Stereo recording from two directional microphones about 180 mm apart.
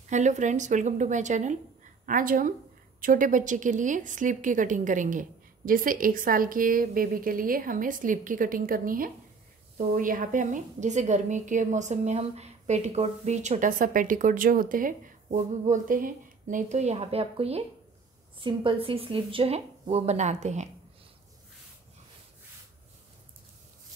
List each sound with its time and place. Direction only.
0.1 s a woman's voice: 40° right (ahead or behind)